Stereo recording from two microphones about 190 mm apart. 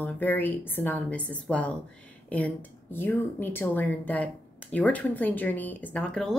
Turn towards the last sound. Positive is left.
turn(degrees=5)  # may be behind; listen again after turning